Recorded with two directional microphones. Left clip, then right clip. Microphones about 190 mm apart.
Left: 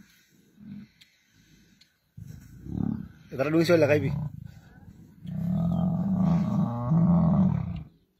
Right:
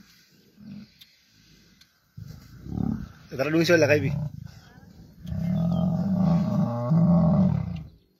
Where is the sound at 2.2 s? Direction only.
Centre (ahead or behind).